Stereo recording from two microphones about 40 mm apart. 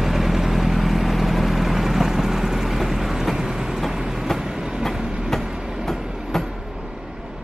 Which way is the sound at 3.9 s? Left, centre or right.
Centre.